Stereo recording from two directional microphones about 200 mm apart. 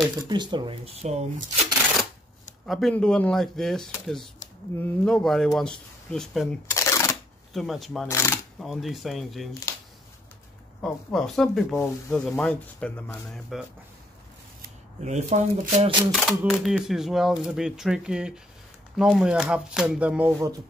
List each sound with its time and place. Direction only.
0.3 s speech: 20° right (ahead or behind)
2.6 s speech: centre (ahead or behind)
6.7 s shuffling cards: 15° left (ahead or behind)
7.5 s speech: centre (ahead or behind)
8.1 s speech: 15° left (ahead or behind)
8.5 s speech: centre (ahead or behind)
10.8 s speech: centre (ahead or behind)
14.6 s speech: 35° right (ahead or behind)
16.1 s speech: centre (ahead or behind)